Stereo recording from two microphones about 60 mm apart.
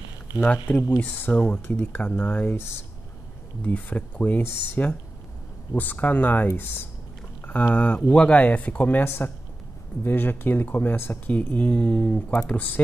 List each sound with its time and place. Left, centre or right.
0.9 s speech: left
1.4 s speech: centre
2.5 s speech: left
3.6 s speech: left
9.0 s speech: left